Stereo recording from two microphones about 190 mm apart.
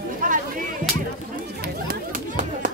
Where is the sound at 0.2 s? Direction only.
45° right (ahead or behind).